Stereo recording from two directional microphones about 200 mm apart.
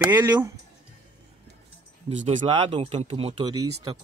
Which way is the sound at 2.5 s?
25° right (ahead or behind).